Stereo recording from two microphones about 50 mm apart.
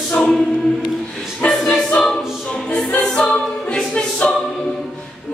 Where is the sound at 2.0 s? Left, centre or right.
Centre.